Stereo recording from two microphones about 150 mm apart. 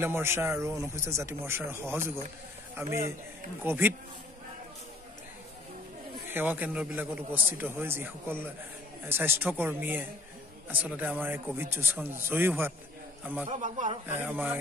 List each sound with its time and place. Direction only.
0.0 s a man's voice: 15° right (ahead or behind)
6.2 s speech: 15° right (ahead or behind)
13.5 s a man's voice: 55° right (ahead or behind)
14.2 s speech: 10° right (ahead or behind)